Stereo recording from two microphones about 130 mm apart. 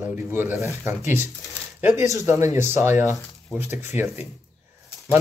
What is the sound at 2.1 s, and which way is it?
Speech, 25° right (ahead or behind).